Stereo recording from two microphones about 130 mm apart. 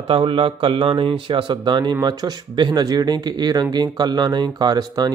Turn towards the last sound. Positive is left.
turn(degrees=-30)  # may be behind; listen again after turning